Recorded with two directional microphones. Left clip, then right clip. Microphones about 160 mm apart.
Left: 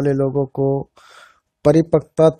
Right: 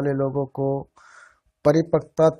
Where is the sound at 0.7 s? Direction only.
30° left (ahead or behind).